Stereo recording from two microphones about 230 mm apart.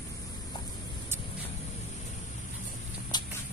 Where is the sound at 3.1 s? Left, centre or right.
Centre.